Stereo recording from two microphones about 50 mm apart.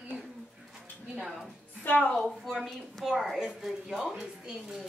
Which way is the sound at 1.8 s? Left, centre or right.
Left.